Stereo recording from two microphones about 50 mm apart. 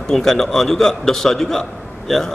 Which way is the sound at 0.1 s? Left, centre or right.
Centre.